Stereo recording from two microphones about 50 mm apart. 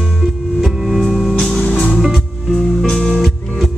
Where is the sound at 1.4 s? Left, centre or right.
Centre.